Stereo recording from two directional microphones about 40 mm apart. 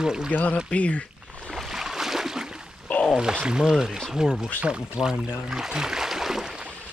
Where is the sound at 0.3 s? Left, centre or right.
Left.